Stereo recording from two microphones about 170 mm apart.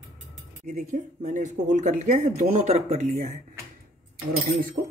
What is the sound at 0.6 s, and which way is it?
Speech, 45° right (ahead or behind).